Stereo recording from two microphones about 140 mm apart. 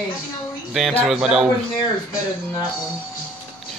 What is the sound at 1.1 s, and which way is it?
Speech, 5° right (ahead or behind).